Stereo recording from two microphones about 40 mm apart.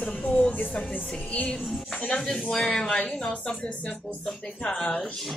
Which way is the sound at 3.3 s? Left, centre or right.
Left.